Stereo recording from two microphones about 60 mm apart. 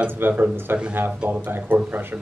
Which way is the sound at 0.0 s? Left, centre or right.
Right.